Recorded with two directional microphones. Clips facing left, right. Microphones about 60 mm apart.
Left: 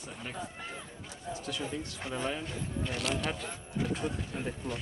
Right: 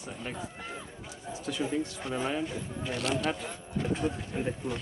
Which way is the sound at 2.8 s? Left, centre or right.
Centre.